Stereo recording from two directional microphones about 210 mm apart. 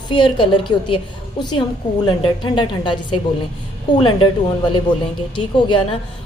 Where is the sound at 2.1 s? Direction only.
20° left (ahead or behind).